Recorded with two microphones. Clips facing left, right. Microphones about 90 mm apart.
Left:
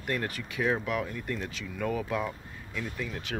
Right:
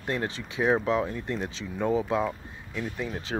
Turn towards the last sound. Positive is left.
turn(degrees=-25)  # may be behind; listen again after turning